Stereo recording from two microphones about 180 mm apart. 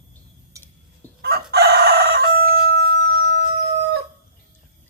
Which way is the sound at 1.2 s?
60° right (ahead or behind).